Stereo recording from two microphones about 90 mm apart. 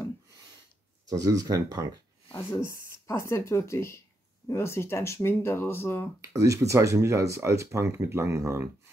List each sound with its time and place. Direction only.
1.0 s speech: 40° right (ahead or behind)
2.6 s speech: 35° left (ahead or behind)
6.2 s speech: 35° right (ahead or behind)